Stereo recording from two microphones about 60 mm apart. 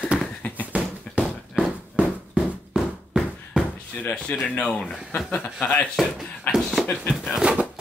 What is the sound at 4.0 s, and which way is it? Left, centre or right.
Speech, centre.